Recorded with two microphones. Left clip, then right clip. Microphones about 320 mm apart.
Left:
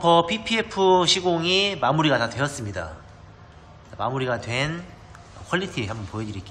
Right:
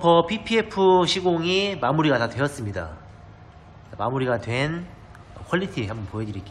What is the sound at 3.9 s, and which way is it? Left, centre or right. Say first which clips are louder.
A man's voice: right 1 dB; centre.